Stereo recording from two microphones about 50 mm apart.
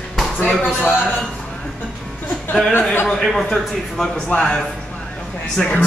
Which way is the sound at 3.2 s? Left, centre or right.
Centre.